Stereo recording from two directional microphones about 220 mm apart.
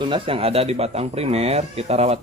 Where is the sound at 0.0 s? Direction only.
25° right (ahead or behind).